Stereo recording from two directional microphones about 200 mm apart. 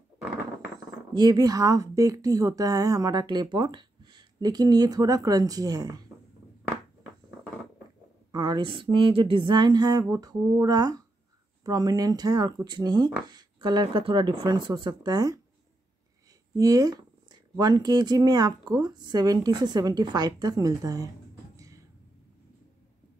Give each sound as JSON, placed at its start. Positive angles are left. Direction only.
{"t": 1.1, "sound": "speech", "side_deg": -20}
{"t": 8.3, "sound": "speech", "side_deg": -20}
{"t": 16.5, "sound": "speech", "side_deg": -15}
{"t": 21.5, "sound": "a sound", "side_deg": -15}